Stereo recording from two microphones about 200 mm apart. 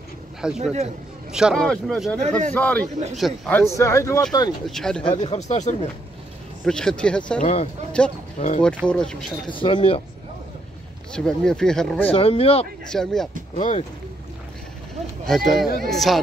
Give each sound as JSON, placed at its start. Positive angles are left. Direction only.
{"t": 0.4, "sound": "speech", "side_deg": -5}
{"t": 2.1, "sound": "speech", "side_deg": -35}
{"t": 2.5, "sound": "speech", "side_deg": 5}
{"t": 4.6, "sound": "speech", "side_deg": 0}
{"t": 5.0, "sound": "speech", "side_deg": 25}
{"t": 6.6, "sound": "speech", "side_deg": 5}
{"t": 8.4, "sound": "speech", "side_deg": 35}
{"t": 8.8, "sound": "speech", "side_deg": 5}
{"t": 9.5, "sound": "speech", "side_deg": 25}
{"t": 11.1, "sound": "speech", "side_deg": 5}
{"t": 12.1, "sound": "speech", "side_deg": 30}
{"t": 12.9, "sound": "speech", "side_deg": 0}
{"t": 13.6, "sound": "speech", "side_deg": 35}
{"t": 15.2, "sound": "speech", "side_deg": 0}